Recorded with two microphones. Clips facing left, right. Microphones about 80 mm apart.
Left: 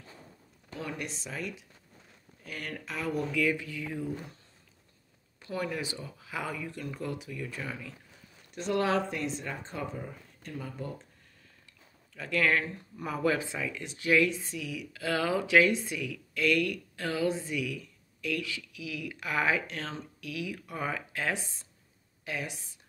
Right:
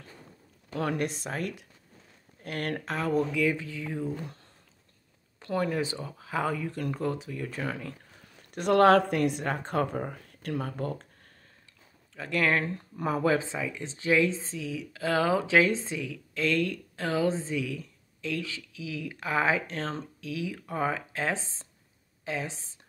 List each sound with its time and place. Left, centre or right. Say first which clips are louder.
0.9 s speech: right 7 dB; right
3.2 s speech: right 1 dB; right
5.4 s speech: right 5 dB; right
12.2 s speech: right 1 dB; right